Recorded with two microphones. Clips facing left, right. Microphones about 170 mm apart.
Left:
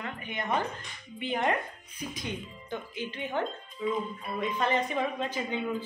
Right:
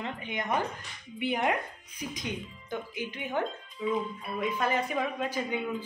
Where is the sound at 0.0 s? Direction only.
20° right (ahead or behind).